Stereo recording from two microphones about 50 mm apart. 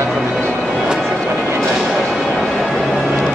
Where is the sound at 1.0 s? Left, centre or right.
Centre.